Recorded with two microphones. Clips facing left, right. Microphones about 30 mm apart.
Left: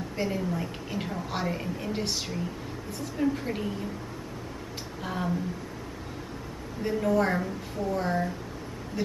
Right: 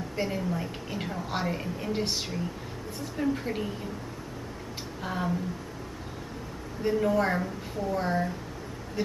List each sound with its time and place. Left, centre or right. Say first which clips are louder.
0.1 s a woman's voice: left 1 dB; centre
5.0 s a woman's voice: even; centre
6.8 s a woman's voice: even; centre